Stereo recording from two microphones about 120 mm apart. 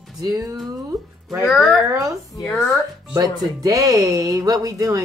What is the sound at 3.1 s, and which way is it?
Speech, 30° right (ahead or behind).